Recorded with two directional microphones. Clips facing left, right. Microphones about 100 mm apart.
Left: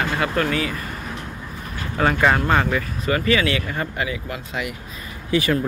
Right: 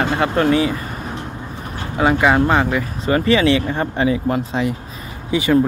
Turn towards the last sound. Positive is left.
turn(degrees=-20)  # may be behind; listen again after turning